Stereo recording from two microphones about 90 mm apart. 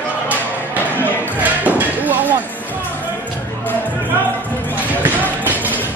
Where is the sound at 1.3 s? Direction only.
15° right (ahead or behind).